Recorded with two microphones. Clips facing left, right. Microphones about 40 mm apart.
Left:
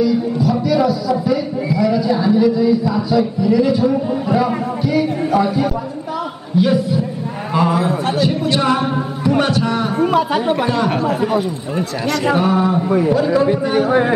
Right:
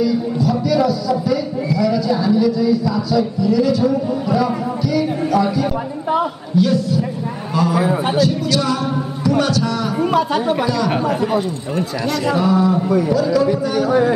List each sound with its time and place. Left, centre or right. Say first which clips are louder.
0.0 s a man's voice: left 2 dB; centre
7.8 s a man's voice: right 1 dB; centre
8.2 s music: even; left
9.9 s a sound: left 1 dB; centre
10.6 s a man's voice: left 1 dB; left
11.1 s speech: left 1 dB; centre
12.3 s a man's voice: even; left
12.8 s a man's voice: left 1 dB; centre
13.1 s a man's voice: left 1 dB; left